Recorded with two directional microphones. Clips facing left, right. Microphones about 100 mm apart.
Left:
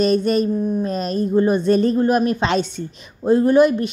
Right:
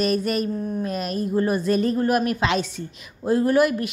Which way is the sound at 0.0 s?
30° left (ahead or behind).